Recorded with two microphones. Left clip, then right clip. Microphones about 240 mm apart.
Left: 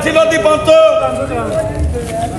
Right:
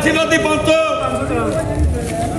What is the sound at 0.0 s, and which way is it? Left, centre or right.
Speech, centre.